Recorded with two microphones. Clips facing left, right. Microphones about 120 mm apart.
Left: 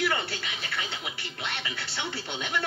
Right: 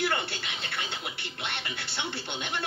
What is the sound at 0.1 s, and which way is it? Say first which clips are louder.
Speech: left 1 dB; 60° right (ahead or behind).